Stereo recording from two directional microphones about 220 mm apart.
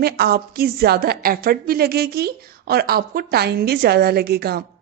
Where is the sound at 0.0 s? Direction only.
45° right (ahead or behind).